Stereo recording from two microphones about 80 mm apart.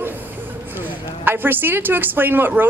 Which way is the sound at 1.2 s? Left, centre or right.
Right.